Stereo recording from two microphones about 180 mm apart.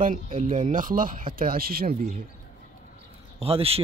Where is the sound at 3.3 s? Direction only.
35° right (ahead or behind).